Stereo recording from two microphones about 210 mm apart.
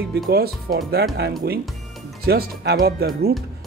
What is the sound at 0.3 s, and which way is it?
Speech, 50° right (ahead or behind).